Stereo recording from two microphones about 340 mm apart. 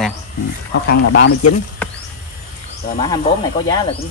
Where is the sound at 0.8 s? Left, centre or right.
Left.